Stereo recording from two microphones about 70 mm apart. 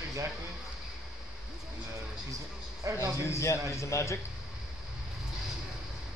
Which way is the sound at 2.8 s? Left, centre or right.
Right.